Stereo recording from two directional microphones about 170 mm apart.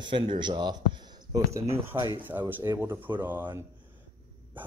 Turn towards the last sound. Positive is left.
turn(degrees=-10)  # may be behind; listen again after turning